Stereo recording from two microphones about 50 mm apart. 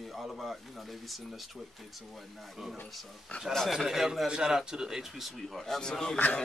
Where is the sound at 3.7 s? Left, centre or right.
Centre.